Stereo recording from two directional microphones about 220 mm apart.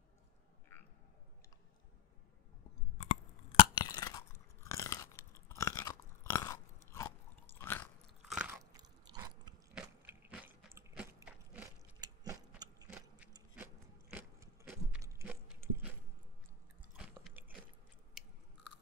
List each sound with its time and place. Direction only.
3.5 s chewing: 20° left (ahead or behind)
8.2 s biting: 5° right (ahead or behind)
9.0 s a sound: 20° right (ahead or behind)
9.8 s biting: 5° right (ahead or behind)
12.0 s gears: 15° right (ahead or behind)
14.1 s a sound: 10° right (ahead or behind)
16.9 s chewing: 5° right (ahead or behind)
18.2 s biting: centre (ahead or behind)